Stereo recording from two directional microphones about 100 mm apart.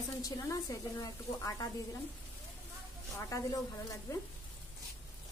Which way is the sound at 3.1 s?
30° left (ahead or behind).